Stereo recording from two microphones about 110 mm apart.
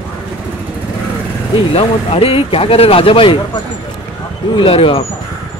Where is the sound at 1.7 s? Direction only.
60° left (ahead or behind).